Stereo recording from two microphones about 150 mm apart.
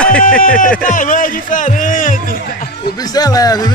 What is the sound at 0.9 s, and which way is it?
A man's voice, 65° left (ahead or behind).